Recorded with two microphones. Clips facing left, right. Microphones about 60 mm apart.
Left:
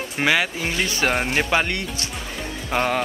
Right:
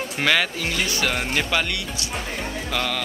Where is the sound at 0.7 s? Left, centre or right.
Left.